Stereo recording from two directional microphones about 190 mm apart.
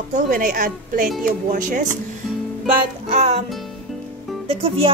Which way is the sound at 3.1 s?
35° right (ahead or behind).